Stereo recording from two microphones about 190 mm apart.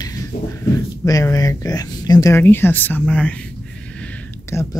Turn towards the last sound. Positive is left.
turn(degrees=15)  # may be behind; listen again after turning